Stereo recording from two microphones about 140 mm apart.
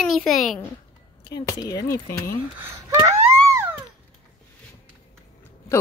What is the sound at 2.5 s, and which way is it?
Speech, 20° right (ahead or behind).